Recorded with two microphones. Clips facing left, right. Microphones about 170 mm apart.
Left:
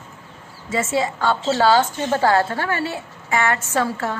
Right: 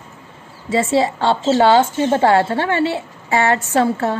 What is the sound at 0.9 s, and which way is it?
A woman's voice, 30° right (ahead or behind).